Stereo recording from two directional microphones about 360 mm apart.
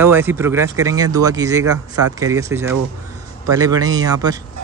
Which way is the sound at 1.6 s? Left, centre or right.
Right.